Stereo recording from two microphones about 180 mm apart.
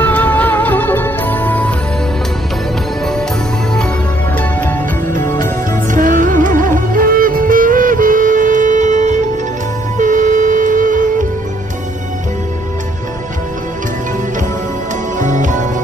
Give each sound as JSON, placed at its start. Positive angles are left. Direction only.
{"t": 0.0, "sound": "music", "side_deg": 10}
{"t": 4.4, "sound": "music", "side_deg": 10}
{"t": 5.9, "sound": "music", "side_deg": -45}
{"t": 15.1, "sound": "music", "side_deg": -45}